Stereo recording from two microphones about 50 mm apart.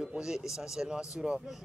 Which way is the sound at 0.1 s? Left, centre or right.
Centre.